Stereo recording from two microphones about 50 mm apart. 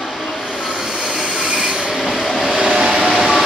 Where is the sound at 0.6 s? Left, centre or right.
Centre.